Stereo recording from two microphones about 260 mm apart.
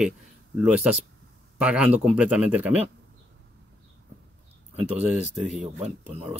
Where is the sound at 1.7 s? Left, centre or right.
Centre.